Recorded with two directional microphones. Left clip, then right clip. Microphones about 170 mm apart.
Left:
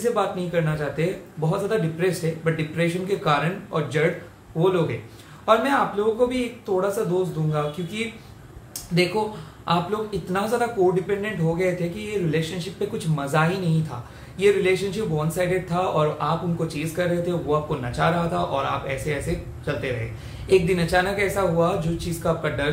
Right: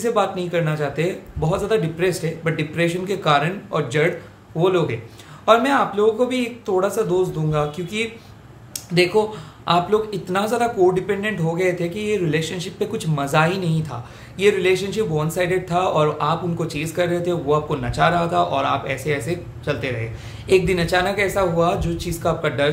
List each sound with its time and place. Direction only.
0.0 s speech: 40° right (ahead or behind)